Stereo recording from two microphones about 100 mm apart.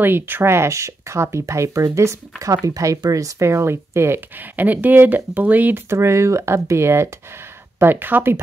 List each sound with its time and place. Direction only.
0.0 s speech: 20° right (ahead or behind)